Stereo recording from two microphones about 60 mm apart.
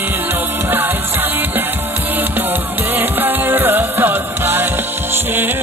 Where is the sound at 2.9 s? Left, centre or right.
Right.